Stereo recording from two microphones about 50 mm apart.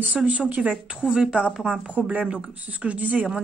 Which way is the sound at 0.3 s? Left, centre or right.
Right.